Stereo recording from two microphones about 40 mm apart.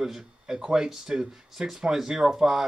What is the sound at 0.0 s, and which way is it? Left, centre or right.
Speech, centre.